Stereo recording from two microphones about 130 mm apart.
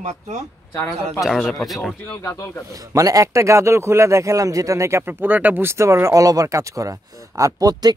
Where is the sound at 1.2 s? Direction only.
Centre (ahead or behind).